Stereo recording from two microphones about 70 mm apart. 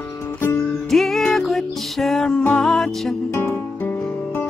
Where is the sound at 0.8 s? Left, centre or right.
Centre.